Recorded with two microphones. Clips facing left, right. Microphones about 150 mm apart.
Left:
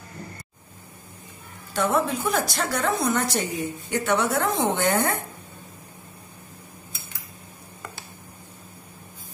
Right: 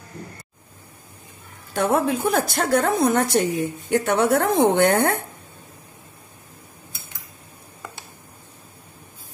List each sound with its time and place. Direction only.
1.7 s a woman's voice: 55° right (ahead or behind)